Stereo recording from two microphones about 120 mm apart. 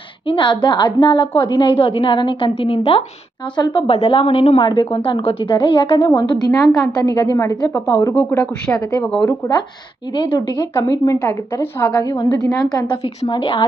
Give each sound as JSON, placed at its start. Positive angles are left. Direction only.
{"t": 0.3, "sound": "a woman's voice", "side_deg": 40}
{"t": 3.5, "sound": "a woman's voice", "side_deg": 40}
{"t": 3.8, "sound": "a woman's voice", "side_deg": 55}
{"t": 6.4, "sound": "a woman's voice", "side_deg": 30}
{"t": 8.1, "sound": "speech", "side_deg": 15}
{"t": 10.1, "sound": "a woman's voice", "side_deg": 40}
{"t": 10.7, "sound": "a woman's voice", "side_deg": 30}